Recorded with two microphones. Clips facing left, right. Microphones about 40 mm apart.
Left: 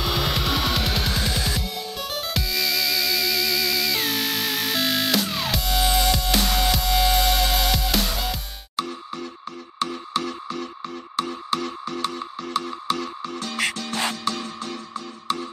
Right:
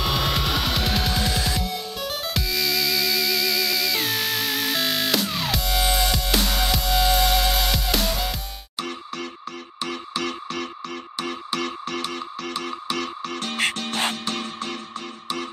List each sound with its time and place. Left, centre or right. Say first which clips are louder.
0.0 s music: right 1 dB; centre
8.8 s music: right 1 dB; right
13.5 s music: right 1 dB; right